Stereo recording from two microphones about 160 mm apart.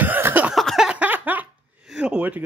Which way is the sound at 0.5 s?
Centre (ahead or behind).